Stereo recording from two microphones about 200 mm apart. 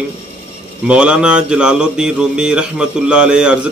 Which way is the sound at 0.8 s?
5° right (ahead or behind).